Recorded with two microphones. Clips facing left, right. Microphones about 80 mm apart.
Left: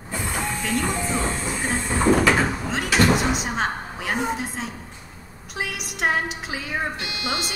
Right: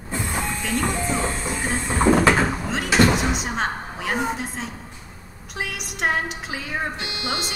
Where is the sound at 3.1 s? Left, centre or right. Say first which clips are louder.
Left 1 dB; centre.